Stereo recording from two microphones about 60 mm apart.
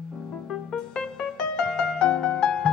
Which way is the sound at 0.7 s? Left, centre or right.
Centre.